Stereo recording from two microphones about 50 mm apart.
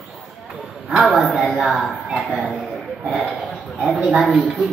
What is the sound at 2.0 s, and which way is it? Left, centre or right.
Speech, right.